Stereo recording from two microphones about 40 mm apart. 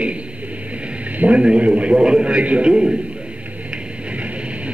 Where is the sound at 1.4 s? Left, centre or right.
Right.